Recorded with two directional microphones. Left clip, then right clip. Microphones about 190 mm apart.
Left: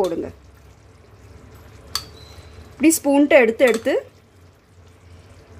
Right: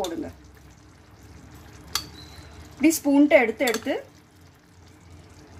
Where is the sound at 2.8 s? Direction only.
45° left (ahead or behind).